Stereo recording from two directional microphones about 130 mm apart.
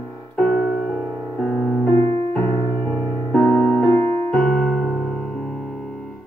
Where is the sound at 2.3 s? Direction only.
20° left (ahead or behind).